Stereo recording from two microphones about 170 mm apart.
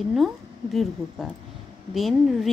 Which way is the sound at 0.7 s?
Centre (ahead or behind).